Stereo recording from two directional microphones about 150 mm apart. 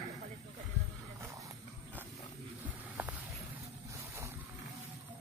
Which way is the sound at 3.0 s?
10° right (ahead or behind).